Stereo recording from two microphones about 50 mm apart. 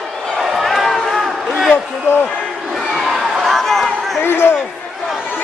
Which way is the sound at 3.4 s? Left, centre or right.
Centre.